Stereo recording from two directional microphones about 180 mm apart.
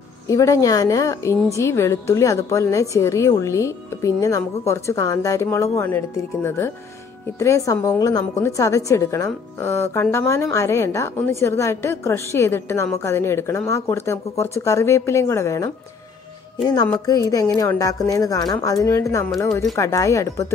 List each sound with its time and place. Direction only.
0.3 s a woman's voice: 20° left (ahead or behind)